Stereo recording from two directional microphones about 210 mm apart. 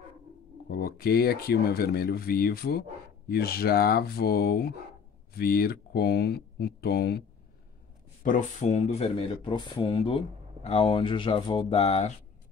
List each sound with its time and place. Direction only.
0.7 s speech: 45° left (ahead or behind)
8.2 s speech: 35° left (ahead or behind)